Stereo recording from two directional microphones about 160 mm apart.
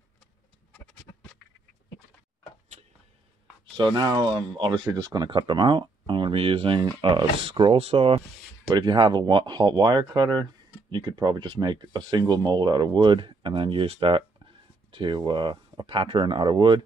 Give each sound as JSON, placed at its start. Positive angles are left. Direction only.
{"t": 3.7, "sound": "speech", "side_deg": -25}